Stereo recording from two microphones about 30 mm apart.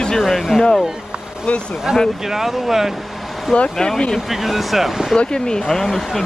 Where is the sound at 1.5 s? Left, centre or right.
Left.